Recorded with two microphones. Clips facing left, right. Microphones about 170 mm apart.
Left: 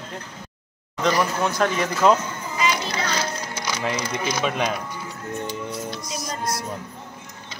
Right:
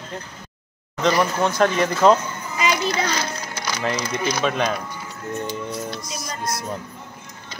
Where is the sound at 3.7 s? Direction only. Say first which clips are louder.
Right 2 dB; 5° left (ahead or behind).